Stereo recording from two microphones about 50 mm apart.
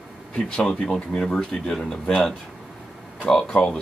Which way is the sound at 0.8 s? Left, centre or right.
Left.